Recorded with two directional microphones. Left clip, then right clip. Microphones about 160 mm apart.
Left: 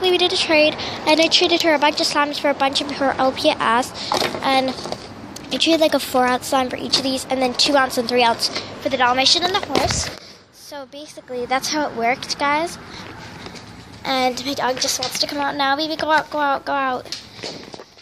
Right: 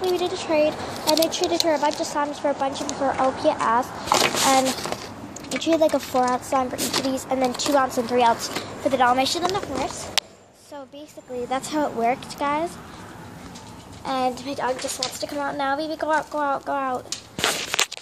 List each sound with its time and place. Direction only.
0.1 s a woman's voice: 10° left (ahead or behind)
1.1 s a woman's voice: 20° left (ahead or behind)
4.1 s a woman's voice: 5° left (ahead or behind)
6.9 s speech: centre (ahead or behind)
11.4 s speech: 5° right (ahead or behind)
14.0 s a woman's voice: 15° left (ahead or behind)